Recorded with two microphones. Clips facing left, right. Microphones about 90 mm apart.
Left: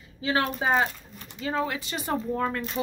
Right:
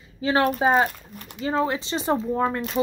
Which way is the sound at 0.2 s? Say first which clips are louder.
Right 6 dB; 35° right (ahead or behind).